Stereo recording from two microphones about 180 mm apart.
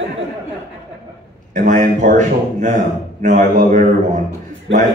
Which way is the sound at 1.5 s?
45° right (ahead or behind).